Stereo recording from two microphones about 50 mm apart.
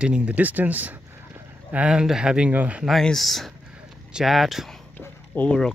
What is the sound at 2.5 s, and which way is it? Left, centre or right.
Speech, right.